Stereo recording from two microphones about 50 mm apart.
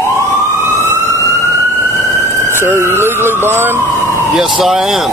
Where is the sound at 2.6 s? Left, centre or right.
Right.